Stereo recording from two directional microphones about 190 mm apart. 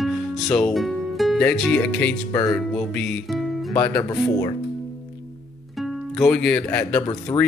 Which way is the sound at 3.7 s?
10° left (ahead or behind).